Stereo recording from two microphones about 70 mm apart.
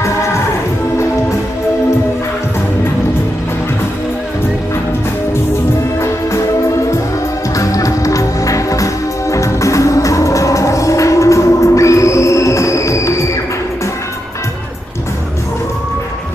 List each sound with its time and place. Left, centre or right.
5.9 s music: left
7.5 s music: left